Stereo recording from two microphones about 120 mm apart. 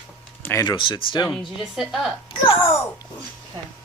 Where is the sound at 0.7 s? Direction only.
45° left (ahead or behind).